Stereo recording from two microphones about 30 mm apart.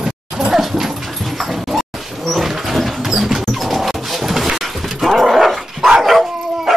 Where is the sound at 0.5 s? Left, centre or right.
Centre.